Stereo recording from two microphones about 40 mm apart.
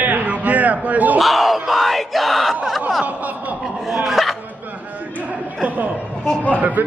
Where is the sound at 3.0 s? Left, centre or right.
Right.